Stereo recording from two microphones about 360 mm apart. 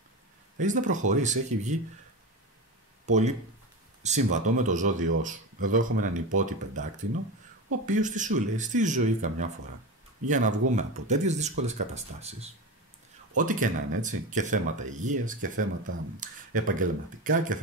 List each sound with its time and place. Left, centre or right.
0.6 s speech: right
3.1 s speech: centre